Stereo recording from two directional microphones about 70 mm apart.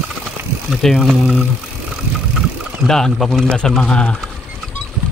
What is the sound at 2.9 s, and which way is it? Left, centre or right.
Speech, centre.